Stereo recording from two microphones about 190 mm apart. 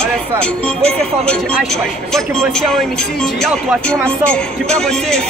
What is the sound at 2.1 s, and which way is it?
Speech, centre (ahead or behind).